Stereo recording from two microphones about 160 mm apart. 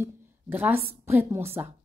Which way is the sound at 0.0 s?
10° right (ahead or behind).